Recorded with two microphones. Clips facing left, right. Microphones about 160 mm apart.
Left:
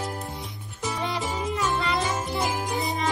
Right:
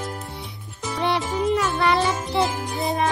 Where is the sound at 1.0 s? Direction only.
70° right (ahead or behind).